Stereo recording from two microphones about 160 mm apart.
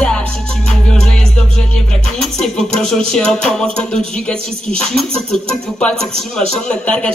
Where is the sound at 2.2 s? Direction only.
5° left (ahead or behind).